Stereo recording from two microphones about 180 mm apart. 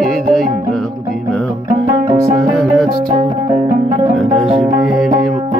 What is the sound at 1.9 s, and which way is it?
Music, 25° right (ahead or behind).